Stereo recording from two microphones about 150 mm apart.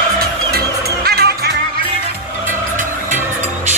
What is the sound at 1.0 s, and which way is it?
Music, 90° right.